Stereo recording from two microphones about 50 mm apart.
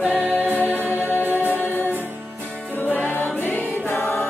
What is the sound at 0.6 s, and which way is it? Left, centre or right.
Music, left.